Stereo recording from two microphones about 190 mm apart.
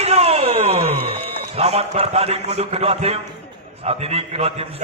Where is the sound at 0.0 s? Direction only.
30° right (ahead or behind).